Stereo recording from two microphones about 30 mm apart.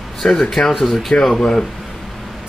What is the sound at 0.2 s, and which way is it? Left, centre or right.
Speech, left.